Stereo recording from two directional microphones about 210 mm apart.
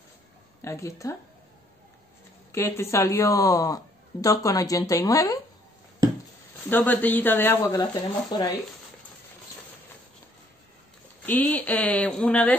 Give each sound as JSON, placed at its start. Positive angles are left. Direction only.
{"t": 0.6, "sound": "speech", "side_deg": 15}
{"t": 2.5, "sound": "a woman's voice", "side_deg": 10}
{"t": 6.7, "sound": "a woman's voice", "side_deg": 10}
{"t": 11.2, "sound": "a woman's voice", "side_deg": 10}